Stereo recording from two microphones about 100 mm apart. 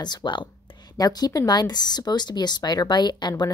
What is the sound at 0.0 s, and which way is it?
Speech, 50° left (ahead or behind).